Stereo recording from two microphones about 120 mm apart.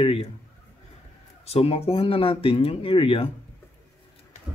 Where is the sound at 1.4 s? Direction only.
60° left (ahead or behind).